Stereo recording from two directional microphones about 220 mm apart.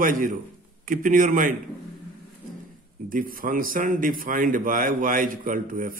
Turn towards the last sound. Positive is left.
turn(degrees=-40)  # may be behind; listen again after turning